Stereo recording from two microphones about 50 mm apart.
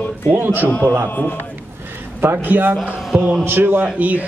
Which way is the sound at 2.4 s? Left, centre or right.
Right.